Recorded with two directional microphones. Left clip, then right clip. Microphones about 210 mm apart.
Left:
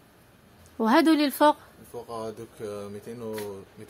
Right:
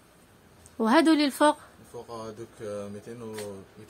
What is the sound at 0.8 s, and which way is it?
Speech, 5° left (ahead or behind).